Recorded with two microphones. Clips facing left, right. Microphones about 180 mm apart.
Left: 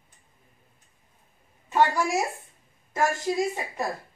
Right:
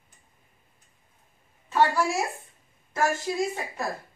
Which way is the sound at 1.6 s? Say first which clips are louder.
Even; 20° left (ahead or behind).